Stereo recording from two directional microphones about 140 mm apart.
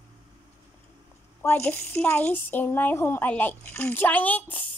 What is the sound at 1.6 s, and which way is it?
Speech, 15° left (ahead or behind).